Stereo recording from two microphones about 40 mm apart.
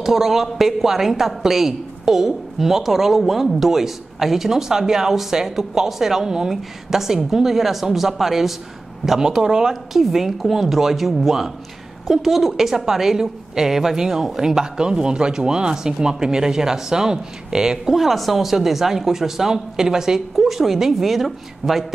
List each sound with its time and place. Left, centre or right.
0.0 s a woman's voice: centre
9.4 s a woman's voice: centre
9.7 s a woman's voice: centre
17.9 s a woman's voice: centre